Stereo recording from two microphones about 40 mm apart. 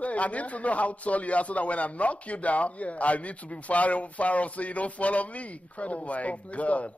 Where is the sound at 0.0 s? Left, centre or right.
Left.